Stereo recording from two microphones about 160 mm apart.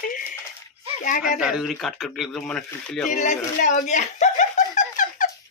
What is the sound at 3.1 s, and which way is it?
Chuckle, 50° left (ahead or behind).